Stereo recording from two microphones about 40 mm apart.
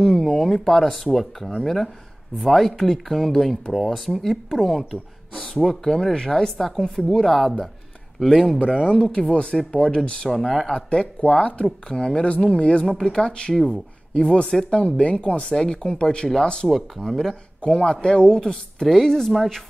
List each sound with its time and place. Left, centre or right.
0.2 s speech: centre
5.3 s speech: centre
8.2 s speech: centre
8.5 s speech: left
10.3 s speech: centre
10.9 s speech: left
12.9 s speech: centre
13.2 s speech: left
17.1 s speech: centre
17.6 s speech: left; by 19.3 s centre